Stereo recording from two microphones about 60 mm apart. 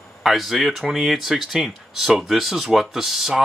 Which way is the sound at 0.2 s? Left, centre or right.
Centre.